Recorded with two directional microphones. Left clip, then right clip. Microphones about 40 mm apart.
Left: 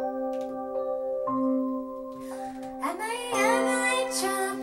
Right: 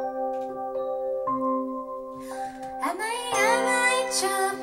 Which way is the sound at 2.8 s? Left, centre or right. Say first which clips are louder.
Right 2 dB; right.